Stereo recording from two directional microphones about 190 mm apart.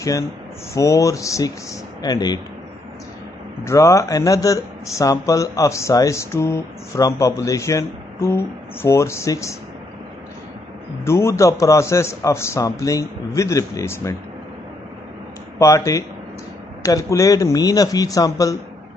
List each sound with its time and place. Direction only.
0.7 s speech: 15° left (ahead or behind)
3.6 s speech: 15° left (ahead or behind)
11.1 s speech: 15° left (ahead or behind)
15.6 s speech: 15° left (ahead or behind)